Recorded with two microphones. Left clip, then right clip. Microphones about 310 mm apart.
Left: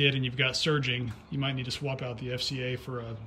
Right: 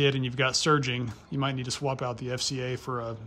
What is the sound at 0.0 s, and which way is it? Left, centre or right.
Speech, centre.